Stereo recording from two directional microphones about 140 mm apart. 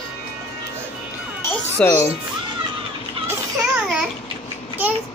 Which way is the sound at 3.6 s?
5° right (ahead or behind).